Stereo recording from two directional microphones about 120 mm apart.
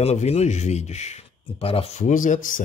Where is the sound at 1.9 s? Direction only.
90° left.